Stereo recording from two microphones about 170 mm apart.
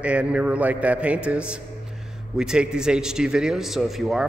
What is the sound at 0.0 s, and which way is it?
A man's voice, 5° right (ahead or behind).